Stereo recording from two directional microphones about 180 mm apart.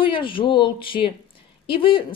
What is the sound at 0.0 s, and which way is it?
A woman's voice, 30° left (ahead or behind).